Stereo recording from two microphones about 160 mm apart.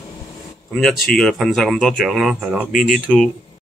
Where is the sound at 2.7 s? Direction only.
55° left (ahead or behind).